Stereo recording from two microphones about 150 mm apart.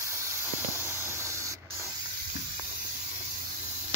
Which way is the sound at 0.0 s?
20° right (ahead or behind).